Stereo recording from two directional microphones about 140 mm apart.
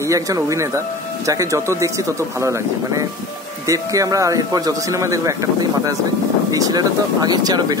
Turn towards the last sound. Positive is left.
turn(degrees=-30)  # may be behind; listen again after turning